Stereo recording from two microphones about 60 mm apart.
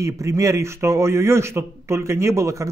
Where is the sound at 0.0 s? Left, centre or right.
Right.